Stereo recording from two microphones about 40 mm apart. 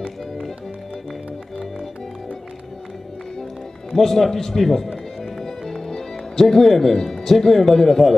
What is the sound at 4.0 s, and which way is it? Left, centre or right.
Speech, centre.